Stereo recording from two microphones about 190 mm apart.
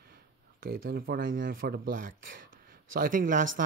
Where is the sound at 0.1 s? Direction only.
50° right (ahead or behind).